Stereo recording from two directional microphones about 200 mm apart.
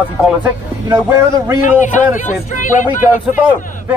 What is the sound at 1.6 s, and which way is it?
Speech, 40° left (ahead or behind).